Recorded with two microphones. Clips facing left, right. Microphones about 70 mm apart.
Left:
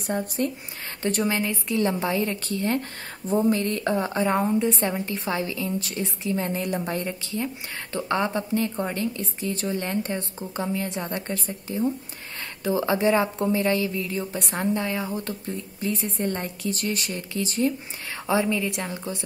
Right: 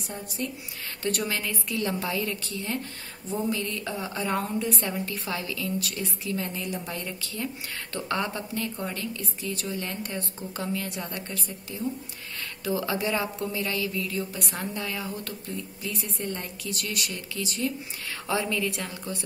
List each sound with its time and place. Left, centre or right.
0.0 s speech: left
1.0 s speech: left
4.1 s speech: left
18.2 s speech: centre